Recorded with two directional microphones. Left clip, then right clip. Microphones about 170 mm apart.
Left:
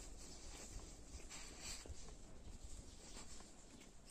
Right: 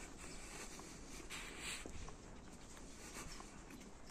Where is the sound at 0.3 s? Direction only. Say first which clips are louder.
Right 4 dB; 15° left (ahead or behind).